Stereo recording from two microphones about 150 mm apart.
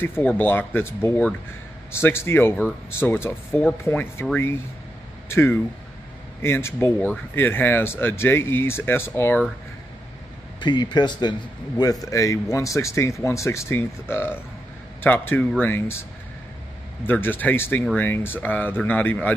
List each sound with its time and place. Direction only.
0.0 s speech: 15° left (ahead or behind)
10.6 s speech: 30° left (ahead or behind); by 19.3 s 10° left (ahead or behind)